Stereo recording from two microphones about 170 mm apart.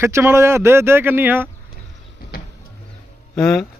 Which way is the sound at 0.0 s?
15° right (ahead or behind).